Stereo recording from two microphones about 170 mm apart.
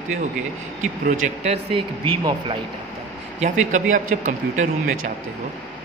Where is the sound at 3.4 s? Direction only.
45° right (ahead or behind).